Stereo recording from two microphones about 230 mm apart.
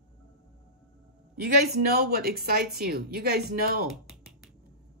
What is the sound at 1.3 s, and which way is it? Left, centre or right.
A woman's voice, right.